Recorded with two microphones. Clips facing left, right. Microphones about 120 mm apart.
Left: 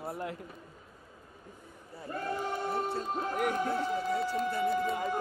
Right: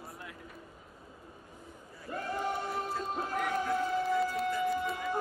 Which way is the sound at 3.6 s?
35° left (ahead or behind).